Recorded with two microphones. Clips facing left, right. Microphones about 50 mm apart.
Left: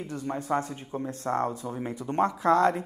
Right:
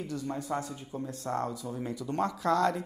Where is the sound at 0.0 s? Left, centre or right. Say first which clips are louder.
Left 2 dB; left.